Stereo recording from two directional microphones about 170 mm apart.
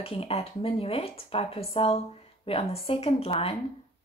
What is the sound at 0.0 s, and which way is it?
Speech, 35° left (ahead or behind).